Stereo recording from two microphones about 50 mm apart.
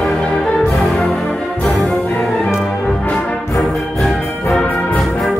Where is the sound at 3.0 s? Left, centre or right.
Left.